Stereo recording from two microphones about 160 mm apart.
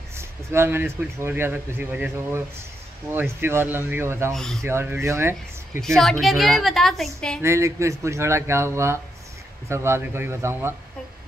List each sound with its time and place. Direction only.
0.1 s speech: 15° right (ahead or behind)
4.3 s a woman's voice: 5° left (ahead or behind)
4.6 s speech: 15° right (ahead or behind)
5.8 s a woman's voice: centre (ahead or behind)
7.4 s speech: 20° right (ahead or behind)